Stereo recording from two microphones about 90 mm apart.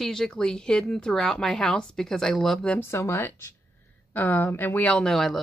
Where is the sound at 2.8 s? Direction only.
30° left (ahead or behind).